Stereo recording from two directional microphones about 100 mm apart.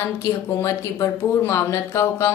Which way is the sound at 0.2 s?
30° left (ahead or behind).